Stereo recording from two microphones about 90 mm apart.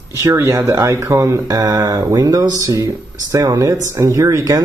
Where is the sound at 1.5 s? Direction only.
50° right (ahead or behind).